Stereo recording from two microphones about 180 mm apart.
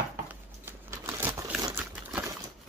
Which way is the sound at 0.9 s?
15° right (ahead or behind).